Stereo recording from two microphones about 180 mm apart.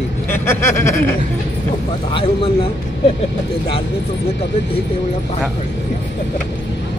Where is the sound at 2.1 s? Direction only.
30° left (ahead or behind).